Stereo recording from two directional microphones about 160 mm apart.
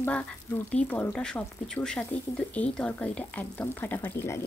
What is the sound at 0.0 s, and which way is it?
Speech, 10° left (ahead or behind).